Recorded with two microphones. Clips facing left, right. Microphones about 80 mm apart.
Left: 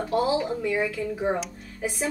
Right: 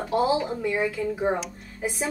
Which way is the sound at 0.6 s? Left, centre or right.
Centre.